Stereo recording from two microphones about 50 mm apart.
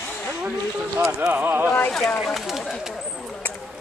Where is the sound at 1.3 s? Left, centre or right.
Right.